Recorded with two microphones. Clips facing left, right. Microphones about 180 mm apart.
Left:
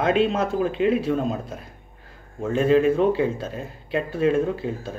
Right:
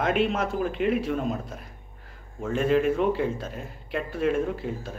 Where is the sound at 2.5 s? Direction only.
30° left (ahead or behind).